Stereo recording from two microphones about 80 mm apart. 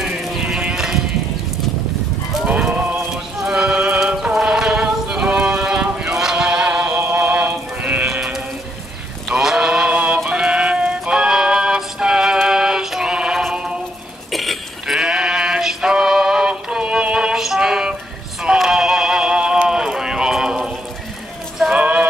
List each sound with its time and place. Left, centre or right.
0.0 s sheep: centre
3.3 s music: centre
9.3 s sheep: centre
9.9 s music: centre
14.3 s sheep: centre
18.4 s synthetic singing: centre
21.7 s music: centre